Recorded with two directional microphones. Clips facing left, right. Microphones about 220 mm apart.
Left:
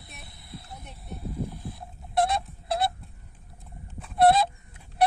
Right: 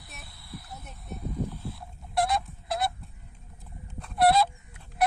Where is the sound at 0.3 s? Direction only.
20° left (ahead or behind).